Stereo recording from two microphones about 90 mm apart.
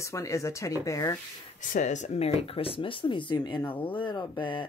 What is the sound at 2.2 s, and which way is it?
Speech, 90° left.